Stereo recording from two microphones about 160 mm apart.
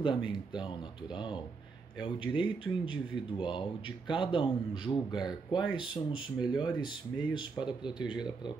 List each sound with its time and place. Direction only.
0.0 s speech: 30° left (ahead or behind)
2.0 s speech: 30° left (ahead or behind)